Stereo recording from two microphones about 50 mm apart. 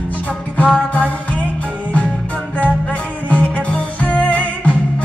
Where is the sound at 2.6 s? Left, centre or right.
Left.